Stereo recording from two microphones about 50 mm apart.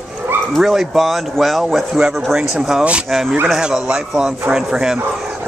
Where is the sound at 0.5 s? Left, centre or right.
Centre.